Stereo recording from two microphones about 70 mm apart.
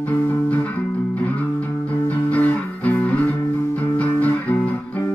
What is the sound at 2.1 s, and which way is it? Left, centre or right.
Music, left.